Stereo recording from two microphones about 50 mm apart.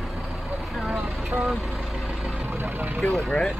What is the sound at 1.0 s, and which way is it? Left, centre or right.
Speech, right.